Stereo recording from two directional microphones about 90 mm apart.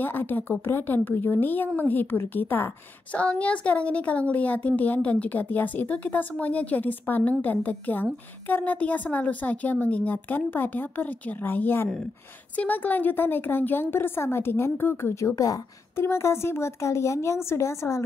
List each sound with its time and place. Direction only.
0.0 s a woman's voice: 20° left (ahead or behind)